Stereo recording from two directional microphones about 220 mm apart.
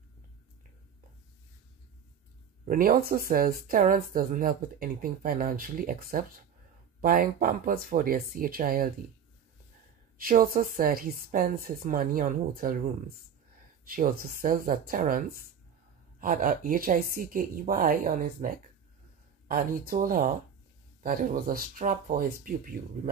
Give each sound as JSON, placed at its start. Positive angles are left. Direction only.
{"t": 2.6, "sound": "speech", "side_deg": -40}
{"t": 10.1, "sound": "speech", "side_deg": -40}
{"t": 13.8, "sound": "speech", "side_deg": -40}